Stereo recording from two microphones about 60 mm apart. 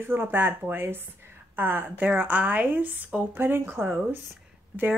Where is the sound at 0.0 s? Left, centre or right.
Right.